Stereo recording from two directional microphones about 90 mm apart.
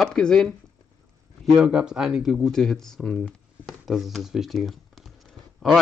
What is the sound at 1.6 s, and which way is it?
Speech, 10° right (ahead or behind).